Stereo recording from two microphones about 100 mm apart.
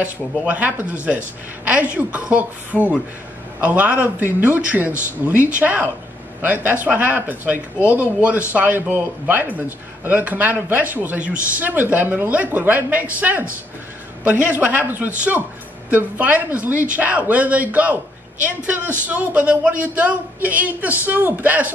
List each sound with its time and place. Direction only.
0.0 s speech: 15° right (ahead or behind)
19.0 s speech: 15° right (ahead or behind)